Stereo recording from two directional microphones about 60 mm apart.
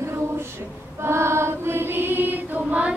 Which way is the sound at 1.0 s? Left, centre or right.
Right.